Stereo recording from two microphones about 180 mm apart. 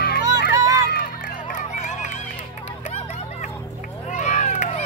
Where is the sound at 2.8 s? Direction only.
40° left (ahead or behind).